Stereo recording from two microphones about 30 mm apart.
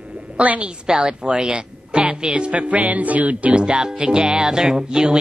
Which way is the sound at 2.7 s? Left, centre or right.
Right.